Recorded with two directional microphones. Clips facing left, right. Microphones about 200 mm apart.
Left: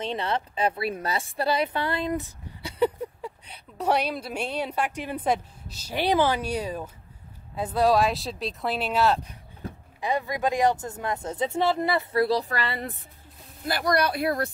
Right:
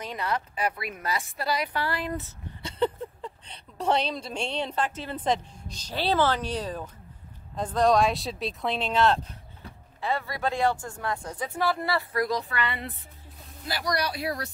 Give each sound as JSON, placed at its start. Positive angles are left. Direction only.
{"t": 0.0, "sound": "a woman's voice", "side_deg": 25}
{"t": 13.7, "sound": "speech", "side_deg": 55}